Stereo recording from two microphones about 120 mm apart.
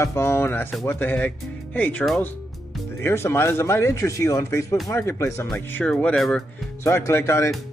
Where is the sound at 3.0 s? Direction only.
20° left (ahead or behind).